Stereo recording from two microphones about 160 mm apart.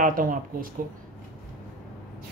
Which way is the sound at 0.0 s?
60° right (ahead or behind).